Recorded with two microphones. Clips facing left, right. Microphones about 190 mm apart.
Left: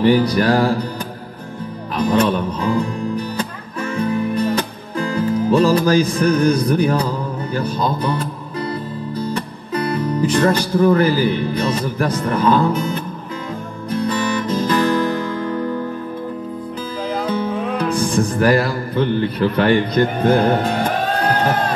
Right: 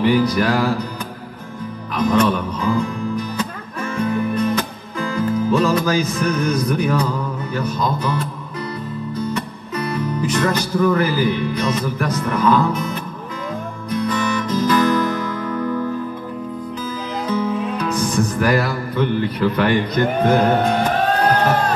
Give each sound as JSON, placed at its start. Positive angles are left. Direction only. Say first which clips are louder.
{"t": 0.0, "sound": "music", "louder": "left 2 dB", "side_deg": 35}
{"t": 2.0, "sound": "music", "louder": "even", "side_deg": 30}
{"t": 17.3, "sound": "music", "louder": "right 4 dB", "side_deg": 30}
{"t": 17.7, "sound": "speech", "louder": "left 2 dB", "side_deg": 30}